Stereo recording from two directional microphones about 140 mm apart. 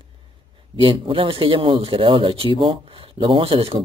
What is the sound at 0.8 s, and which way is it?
A man's voice, 40° right (ahead or behind).